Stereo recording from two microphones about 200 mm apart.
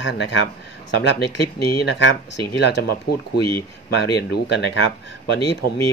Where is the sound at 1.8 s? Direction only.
65° left (ahead or behind).